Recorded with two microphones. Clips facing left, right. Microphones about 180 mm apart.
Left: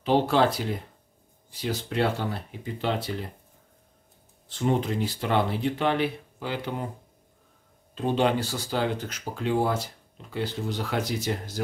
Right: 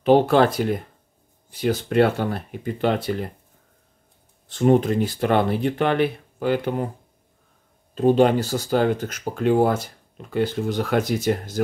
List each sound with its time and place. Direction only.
0.0 s speech: 55° right (ahead or behind)
4.5 s speech: 50° right (ahead or behind)
7.9 s speech: 45° right (ahead or behind)